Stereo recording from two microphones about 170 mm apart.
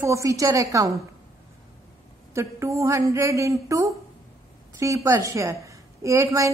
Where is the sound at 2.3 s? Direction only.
15° right (ahead or behind).